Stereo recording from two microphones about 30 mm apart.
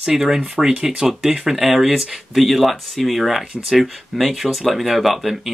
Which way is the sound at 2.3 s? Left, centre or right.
Centre.